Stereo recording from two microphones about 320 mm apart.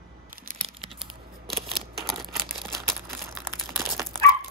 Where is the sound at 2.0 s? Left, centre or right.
Centre.